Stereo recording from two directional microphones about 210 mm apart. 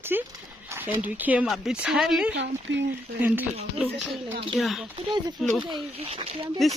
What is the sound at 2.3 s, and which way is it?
Speech, 55° right (ahead or behind).